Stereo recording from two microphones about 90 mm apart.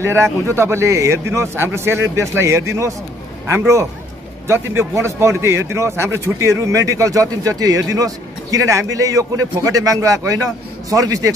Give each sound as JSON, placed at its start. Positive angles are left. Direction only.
{"t": 0.0, "sound": "a man's voice", "side_deg": -30}